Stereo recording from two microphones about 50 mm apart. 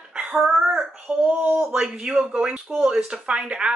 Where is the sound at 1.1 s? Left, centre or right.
Right.